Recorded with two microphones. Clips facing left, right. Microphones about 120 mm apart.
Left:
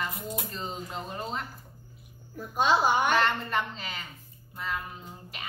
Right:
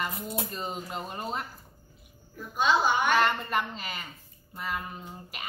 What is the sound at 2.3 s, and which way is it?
Speech, 35° left (ahead or behind).